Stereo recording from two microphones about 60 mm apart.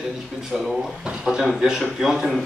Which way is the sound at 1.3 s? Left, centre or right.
Centre.